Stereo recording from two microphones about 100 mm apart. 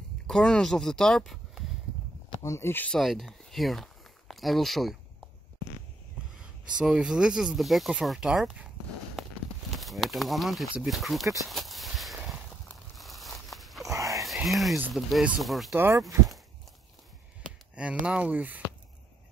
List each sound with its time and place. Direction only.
0.3 s speech: 5° left (ahead or behind)
2.4 s speech: 25° left (ahead or behind)
2.9 s speech: centre (ahead or behind)
6.8 s speech: 5° right (ahead or behind)
9.8 s speech: centre (ahead or behind)
11.4 s walk: centre (ahead or behind)
12.9 s a sound: centre (ahead or behind)
13.8 s a sound: 35° right (ahead or behind)
14.2 s a sound: centre (ahead or behind)
15.0 s speech: centre (ahead or behind)
15.7 s speech: 20° right (ahead or behind)
17.7 s speech: 10° right (ahead or behind)